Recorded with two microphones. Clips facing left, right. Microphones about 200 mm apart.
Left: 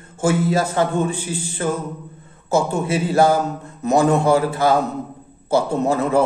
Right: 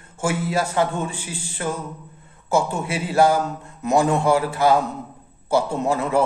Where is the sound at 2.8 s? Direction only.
40° left (ahead or behind).